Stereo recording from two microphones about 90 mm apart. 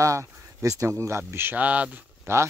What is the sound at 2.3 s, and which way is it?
Speech, 30° right (ahead or behind).